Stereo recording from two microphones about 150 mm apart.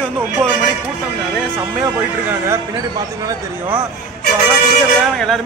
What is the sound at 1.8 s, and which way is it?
Speech, 10° right (ahead or behind).